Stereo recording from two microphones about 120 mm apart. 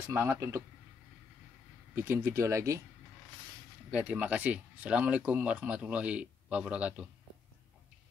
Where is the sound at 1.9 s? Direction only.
20° right (ahead or behind).